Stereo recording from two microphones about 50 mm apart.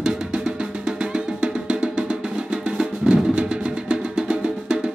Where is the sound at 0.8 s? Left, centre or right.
Centre.